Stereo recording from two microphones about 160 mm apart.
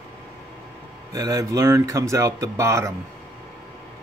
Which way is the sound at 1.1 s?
20° right (ahead or behind).